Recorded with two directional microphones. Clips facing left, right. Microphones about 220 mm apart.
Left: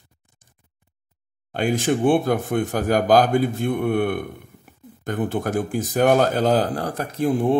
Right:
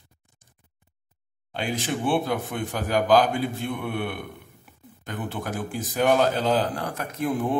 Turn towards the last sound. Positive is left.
turn(degrees=30)  # may be behind; listen again after turning